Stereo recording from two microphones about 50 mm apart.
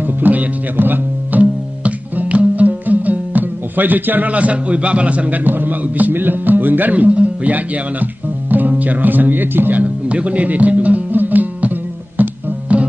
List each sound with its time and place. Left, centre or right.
0.0 s music: right